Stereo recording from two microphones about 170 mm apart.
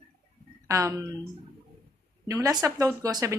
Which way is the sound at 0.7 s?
20° right (ahead or behind).